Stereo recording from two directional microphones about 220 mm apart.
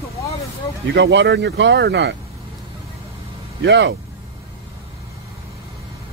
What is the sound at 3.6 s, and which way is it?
Speech, 50° right (ahead or behind).